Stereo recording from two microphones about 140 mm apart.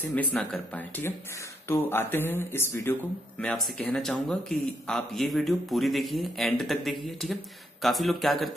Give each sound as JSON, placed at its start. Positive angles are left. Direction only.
{"t": 0.0, "sound": "speech", "side_deg": 10}
{"t": 3.3, "sound": "a man's voice", "side_deg": 5}